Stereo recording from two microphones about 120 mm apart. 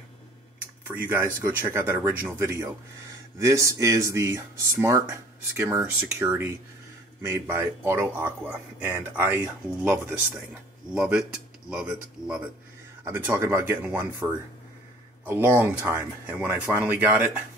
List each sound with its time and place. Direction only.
0.8 s speech: 20° right (ahead or behind)
13.0 s speech: 20° right (ahead or behind)